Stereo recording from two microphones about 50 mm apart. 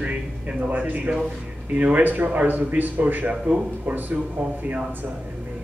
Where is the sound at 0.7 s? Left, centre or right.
Right.